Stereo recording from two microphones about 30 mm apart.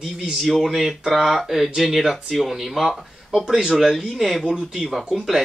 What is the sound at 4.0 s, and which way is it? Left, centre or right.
Speech, centre.